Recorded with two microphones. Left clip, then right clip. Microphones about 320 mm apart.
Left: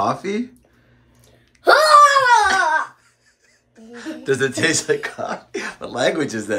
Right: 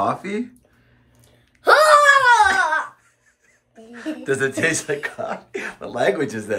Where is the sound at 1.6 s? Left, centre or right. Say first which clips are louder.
Left 2 dB; centre.